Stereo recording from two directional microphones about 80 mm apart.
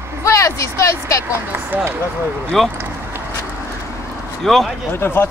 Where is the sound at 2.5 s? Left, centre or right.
Centre.